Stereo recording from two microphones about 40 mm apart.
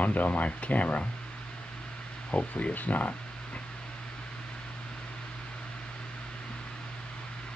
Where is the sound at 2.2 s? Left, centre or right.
Left.